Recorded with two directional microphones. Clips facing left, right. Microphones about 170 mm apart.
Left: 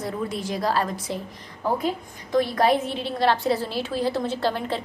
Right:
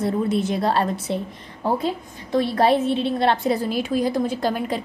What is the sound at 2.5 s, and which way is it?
A woman's voice, 25° right (ahead or behind).